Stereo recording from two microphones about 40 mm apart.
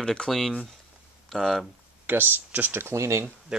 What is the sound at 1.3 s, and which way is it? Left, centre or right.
Speech, centre.